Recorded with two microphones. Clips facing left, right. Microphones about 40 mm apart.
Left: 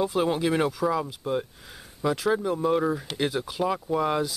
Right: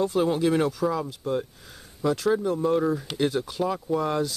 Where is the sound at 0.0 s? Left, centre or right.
Centre.